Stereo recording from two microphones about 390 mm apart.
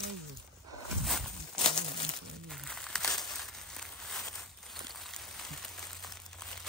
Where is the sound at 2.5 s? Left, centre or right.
Centre.